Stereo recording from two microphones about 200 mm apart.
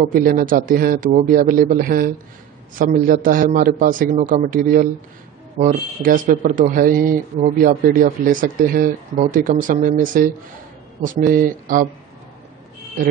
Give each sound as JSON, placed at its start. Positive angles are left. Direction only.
{"t": 0.0, "sound": "speech", "side_deg": -40}